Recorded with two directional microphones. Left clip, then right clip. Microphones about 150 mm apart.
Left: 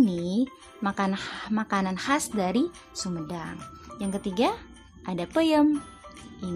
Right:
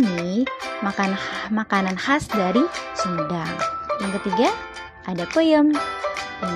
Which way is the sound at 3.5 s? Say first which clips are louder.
Right 18 dB; 40° right (ahead or behind).